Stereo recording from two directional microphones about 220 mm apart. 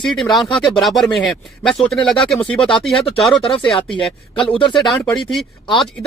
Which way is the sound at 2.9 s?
25° left (ahead or behind).